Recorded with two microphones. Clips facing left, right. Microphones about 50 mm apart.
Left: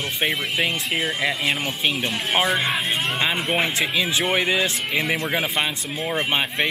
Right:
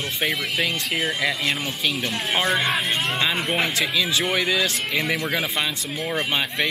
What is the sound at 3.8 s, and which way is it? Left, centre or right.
Speech, left.